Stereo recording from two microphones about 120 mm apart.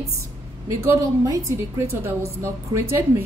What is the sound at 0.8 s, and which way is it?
A woman's voice, 20° right (ahead or behind).